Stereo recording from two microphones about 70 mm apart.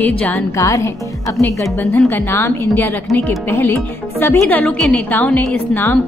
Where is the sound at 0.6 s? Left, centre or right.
Left.